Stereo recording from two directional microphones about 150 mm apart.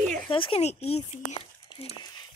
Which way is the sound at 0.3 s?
35° left (ahead or behind).